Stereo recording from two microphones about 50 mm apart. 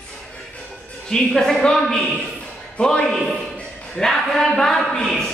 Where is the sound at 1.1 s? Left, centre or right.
Centre.